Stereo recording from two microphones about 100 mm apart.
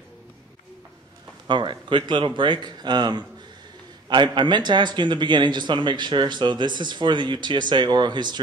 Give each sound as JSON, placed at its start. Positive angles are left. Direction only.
{"t": 1.5, "sound": "a man's voice", "side_deg": -55}